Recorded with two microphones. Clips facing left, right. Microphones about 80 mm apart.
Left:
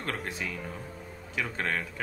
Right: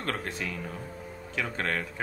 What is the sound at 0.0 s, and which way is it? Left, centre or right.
Speech, centre.